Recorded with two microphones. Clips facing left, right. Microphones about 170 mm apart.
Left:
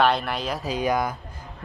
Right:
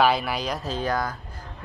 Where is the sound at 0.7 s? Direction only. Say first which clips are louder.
Left 4 dB; 15° left (ahead or behind).